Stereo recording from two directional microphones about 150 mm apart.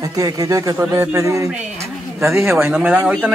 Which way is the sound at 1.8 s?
15° right (ahead or behind).